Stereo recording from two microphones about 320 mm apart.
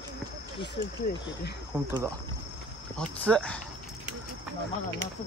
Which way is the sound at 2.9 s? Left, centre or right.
Centre.